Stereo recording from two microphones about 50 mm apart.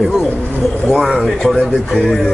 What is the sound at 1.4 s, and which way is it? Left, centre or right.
Speech, centre.